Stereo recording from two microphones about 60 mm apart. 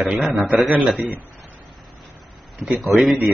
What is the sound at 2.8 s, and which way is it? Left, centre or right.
Speech, centre.